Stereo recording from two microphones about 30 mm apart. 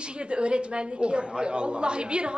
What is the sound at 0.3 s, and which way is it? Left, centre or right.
A woman's voice, right.